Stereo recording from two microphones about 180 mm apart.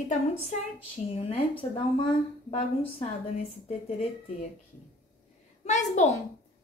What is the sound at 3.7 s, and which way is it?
Speech, 35° left (ahead or behind).